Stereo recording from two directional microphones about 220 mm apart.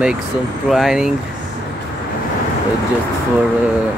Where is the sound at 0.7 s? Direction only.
Centre (ahead or behind).